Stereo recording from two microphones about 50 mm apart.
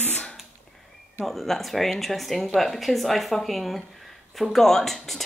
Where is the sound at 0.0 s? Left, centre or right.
Left.